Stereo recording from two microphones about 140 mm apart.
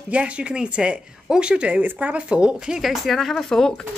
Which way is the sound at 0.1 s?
10° right (ahead or behind).